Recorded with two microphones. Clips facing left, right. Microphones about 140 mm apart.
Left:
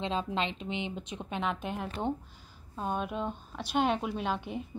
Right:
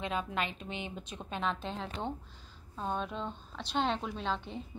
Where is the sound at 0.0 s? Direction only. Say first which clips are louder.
Left 3 dB; 25° left (ahead or behind).